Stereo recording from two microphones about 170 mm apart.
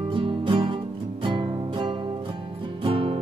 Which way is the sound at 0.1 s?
30° right (ahead or behind).